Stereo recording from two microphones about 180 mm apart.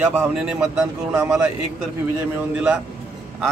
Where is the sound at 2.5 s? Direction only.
5° right (ahead or behind).